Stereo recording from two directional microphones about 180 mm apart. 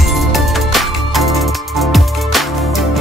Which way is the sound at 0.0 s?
Centre (ahead or behind).